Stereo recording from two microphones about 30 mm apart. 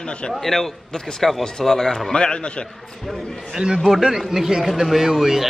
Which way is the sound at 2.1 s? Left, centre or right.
Left.